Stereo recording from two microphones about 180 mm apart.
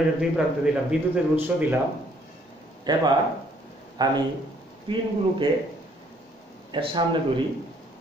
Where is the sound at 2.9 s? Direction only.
25° right (ahead or behind).